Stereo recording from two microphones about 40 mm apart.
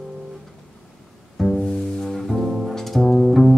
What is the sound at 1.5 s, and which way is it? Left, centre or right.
Bowed string instrument, centre.